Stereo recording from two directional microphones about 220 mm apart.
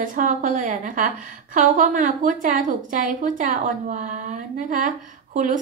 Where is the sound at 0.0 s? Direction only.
35° right (ahead or behind).